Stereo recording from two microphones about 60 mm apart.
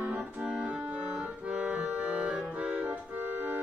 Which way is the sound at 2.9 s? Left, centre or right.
Right.